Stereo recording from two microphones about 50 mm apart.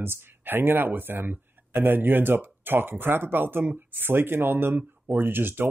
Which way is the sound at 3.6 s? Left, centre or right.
Right.